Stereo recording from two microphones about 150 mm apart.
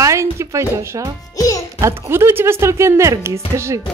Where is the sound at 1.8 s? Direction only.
20° right (ahead or behind).